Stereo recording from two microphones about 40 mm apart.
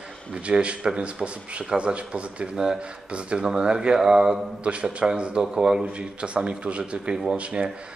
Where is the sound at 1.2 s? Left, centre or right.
Centre.